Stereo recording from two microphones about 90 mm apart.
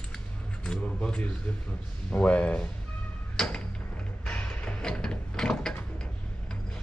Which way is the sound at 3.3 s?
10° left (ahead or behind).